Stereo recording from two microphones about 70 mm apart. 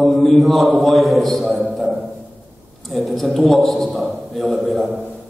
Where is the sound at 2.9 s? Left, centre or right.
Centre.